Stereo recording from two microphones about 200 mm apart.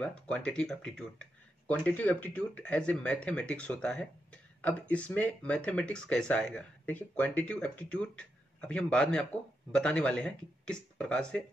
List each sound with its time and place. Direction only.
0.0 s speech: 5° left (ahead or behind)